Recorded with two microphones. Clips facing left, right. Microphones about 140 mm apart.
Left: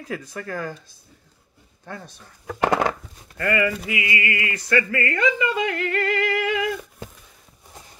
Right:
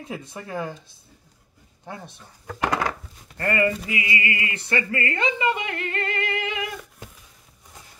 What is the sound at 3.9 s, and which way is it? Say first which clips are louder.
Speech: left 1 dB; 30° right (ahead or behind).